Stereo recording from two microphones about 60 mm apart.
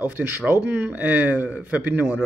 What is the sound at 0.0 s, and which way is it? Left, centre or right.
A man's voice, right.